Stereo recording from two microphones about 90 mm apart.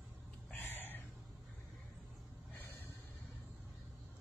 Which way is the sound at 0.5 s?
25° left (ahead or behind).